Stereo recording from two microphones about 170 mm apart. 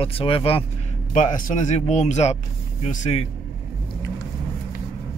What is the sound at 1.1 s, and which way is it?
Speech, 50° left (ahead or behind).